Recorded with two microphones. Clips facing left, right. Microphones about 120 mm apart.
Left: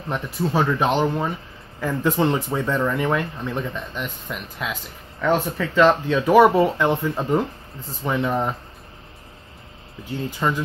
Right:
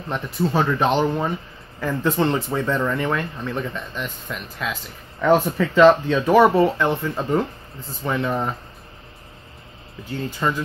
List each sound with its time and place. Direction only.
0.1 s speech: 5° left (ahead or behind)
5.2 s speech: 5° right (ahead or behind)
10.4 s speech: 10° left (ahead or behind)